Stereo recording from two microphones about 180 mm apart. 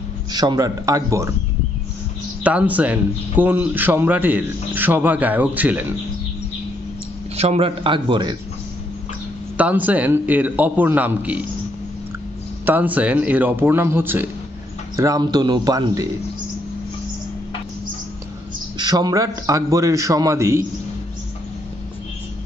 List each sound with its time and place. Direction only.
0.3 s a man's voice: 20° right (ahead or behind)
2.4 s speech: 10° right (ahead or behind)
7.3 s a man's voice: 35° right (ahead or behind)
9.6 s speech: 10° right (ahead or behind)
12.6 s a man's voice: 10° right (ahead or behind)
18.8 s speech: 20° right (ahead or behind)